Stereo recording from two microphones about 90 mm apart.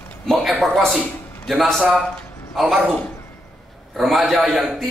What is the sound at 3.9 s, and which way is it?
Speech, centre (ahead or behind).